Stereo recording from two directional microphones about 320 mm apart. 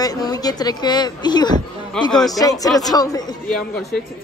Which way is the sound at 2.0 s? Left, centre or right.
Centre.